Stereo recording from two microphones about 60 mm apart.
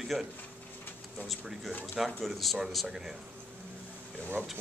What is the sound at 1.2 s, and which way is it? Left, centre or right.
Speech, centre.